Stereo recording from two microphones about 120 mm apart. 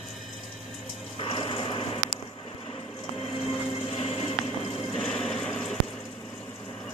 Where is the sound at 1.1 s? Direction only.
50° left (ahead or behind).